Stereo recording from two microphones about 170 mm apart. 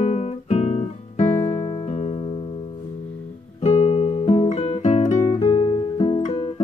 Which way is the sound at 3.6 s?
40° left (ahead or behind).